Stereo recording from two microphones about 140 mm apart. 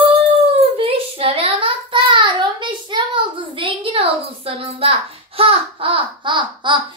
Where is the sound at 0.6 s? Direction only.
45° right (ahead or behind).